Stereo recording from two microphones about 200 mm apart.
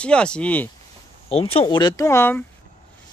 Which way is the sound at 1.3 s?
30° left (ahead or behind).